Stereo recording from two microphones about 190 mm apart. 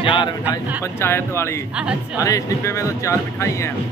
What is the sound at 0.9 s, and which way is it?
Speech, 10° left (ahead or behind).